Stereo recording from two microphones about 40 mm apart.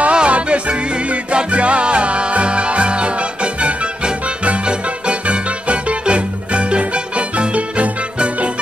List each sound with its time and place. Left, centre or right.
0.0 s music: right